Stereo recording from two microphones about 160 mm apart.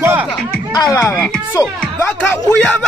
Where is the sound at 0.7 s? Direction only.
25° left (ahead or behind).